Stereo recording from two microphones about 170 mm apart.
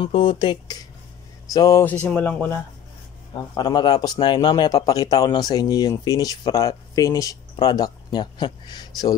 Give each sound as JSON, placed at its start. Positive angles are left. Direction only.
{"t": 0.0, "sound": "a man's voice", "side_deg": 30}
{"t": 3.3, "sound": "a man's voice", "side_deg": 25}